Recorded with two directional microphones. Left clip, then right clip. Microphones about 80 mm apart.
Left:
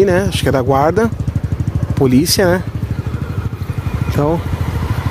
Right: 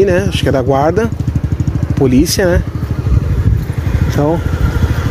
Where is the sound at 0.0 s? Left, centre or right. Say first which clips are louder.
Right 1 dB; left.